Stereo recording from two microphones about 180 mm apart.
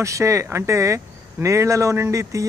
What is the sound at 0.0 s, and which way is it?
A man's voice, 15° right (ahead or behind).